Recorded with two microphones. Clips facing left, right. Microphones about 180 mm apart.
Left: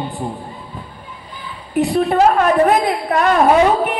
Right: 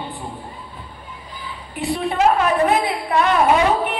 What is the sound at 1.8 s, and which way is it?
A woman's voice, 40° left (ahead or behind).